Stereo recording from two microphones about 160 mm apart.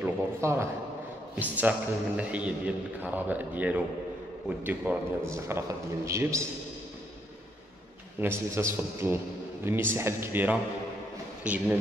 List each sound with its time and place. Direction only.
0.0 s a man's voice: 15° right (ahead or behind)
8.2 s a man's voice: 15° right (ahead or behind)